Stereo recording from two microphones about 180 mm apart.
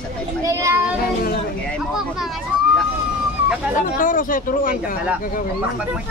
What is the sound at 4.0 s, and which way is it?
Speech, 50° left (ahead or behind).